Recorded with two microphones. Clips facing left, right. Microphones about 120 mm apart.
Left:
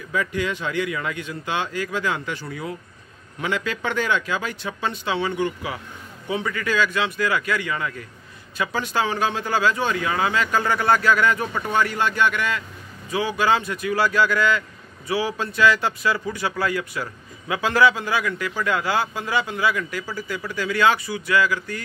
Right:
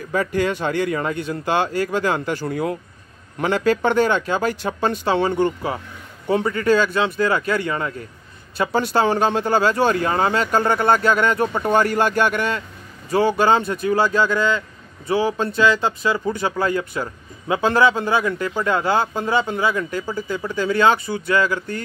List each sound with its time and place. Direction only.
0.1 s speech: 40° right (ahead or behind)
3.3 s speech: 40° right (ahead or behind)
11.7 s speech: 45° right (ahead or behind); by 21.8 s 30° right (ahead or behind)